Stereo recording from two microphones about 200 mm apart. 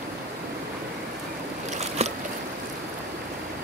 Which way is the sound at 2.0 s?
30° right (ahead or behind).